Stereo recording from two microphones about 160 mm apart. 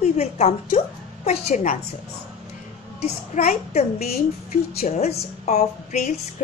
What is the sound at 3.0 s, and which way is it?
A woman's voice, 45° left (ahead or behind).